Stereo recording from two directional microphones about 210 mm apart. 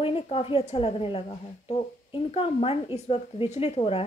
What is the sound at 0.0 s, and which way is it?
A woman's voice, 25° left (ahead or behind).